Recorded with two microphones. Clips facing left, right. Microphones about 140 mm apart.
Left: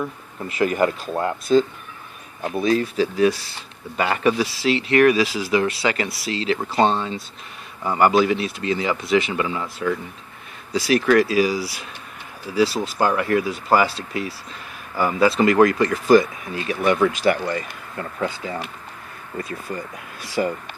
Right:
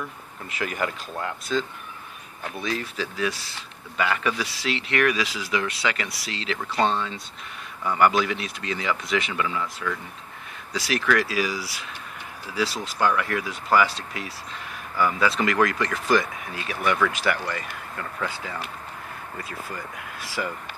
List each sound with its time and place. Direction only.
0.0 s speech: 35° left (ahead or behind)
12.8 s speech: 40° left (ahead or behind)
15.0 s speech: 40° left (ahead or behind)
20.4 s speech: 35° left (ahead or behind)